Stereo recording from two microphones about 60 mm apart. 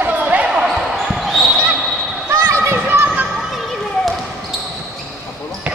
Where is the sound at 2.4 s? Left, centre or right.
Right.